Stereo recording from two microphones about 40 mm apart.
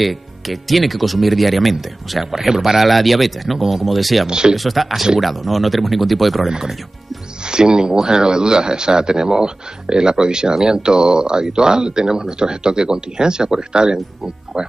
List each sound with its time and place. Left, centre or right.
0.0 s speech: centre
4.3 s speech: centre
4.6 s speech: centre
7.4 s speech: right